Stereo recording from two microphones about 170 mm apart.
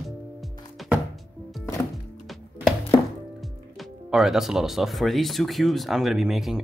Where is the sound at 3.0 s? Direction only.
25° left (ahead or behind).